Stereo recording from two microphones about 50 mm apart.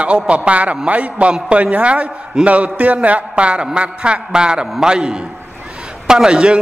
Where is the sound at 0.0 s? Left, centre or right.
Right.